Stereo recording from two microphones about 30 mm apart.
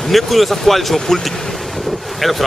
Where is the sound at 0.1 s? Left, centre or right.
Centre.